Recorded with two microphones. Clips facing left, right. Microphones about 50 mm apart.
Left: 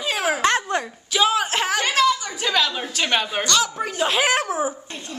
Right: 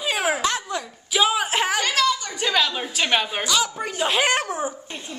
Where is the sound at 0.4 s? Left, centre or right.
Left.